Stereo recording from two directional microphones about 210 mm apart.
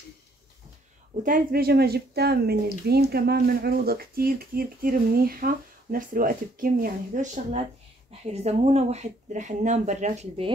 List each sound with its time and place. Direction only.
1.2 s speech: 45° right (ahead or behind)